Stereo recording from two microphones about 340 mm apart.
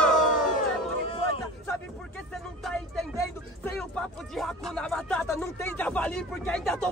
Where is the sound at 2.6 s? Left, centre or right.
Centre.